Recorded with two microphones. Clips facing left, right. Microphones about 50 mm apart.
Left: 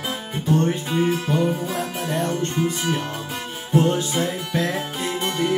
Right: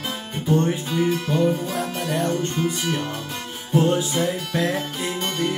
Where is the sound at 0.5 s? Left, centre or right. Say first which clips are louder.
Even; centre.